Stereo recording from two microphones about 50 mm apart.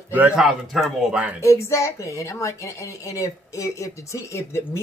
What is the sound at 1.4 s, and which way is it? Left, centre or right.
Speech, left.